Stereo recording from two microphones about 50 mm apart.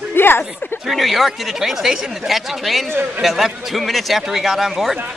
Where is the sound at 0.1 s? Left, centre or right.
Left.